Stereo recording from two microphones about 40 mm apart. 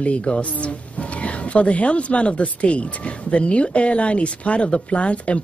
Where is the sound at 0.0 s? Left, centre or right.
Left.